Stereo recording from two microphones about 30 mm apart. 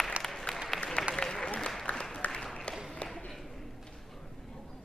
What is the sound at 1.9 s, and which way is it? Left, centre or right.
Applause, left.